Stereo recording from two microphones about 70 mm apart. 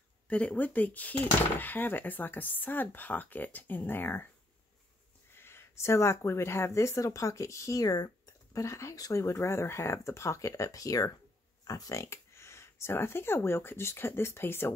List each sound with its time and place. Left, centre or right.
0.3 s speech: centre
5.3 s speech: left
8.5 s speech: left
9.2 s speech: left